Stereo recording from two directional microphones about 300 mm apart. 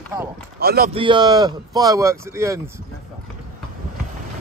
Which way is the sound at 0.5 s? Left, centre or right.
Right.